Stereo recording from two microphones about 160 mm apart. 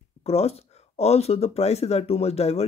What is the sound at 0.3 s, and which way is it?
Speech, 40° left (ahead or behind).